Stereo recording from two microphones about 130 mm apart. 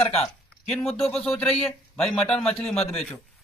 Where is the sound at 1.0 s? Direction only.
5° left (ahead or behind).